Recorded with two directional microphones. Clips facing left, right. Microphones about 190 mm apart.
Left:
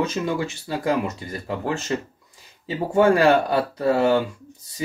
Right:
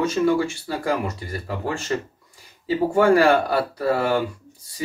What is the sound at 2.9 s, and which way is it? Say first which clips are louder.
Speech: left 1 dB; 20° left (ahead or behind).